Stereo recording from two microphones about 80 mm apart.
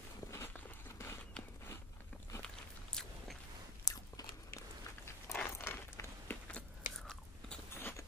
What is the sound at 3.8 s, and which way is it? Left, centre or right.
Crunch, left.